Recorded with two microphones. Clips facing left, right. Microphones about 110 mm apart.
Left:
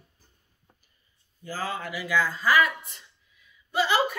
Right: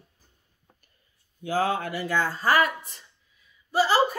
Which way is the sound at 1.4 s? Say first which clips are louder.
Right 7 dB; 60° right (ahead or behind).